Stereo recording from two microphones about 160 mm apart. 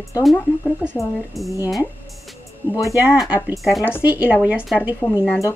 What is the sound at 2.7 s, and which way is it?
Speech, 20° left (ahead or behind).